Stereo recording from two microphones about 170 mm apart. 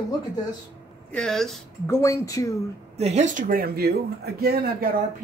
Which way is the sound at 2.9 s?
40° right (ahead or behind).